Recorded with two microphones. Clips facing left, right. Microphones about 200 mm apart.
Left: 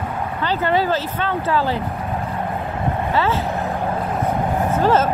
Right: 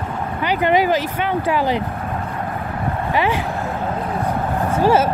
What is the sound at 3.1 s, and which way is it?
Speech, 15° right (ahead or behind).